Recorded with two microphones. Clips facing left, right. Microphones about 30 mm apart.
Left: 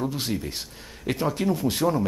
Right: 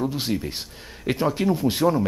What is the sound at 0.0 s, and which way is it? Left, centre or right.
Speech, centre.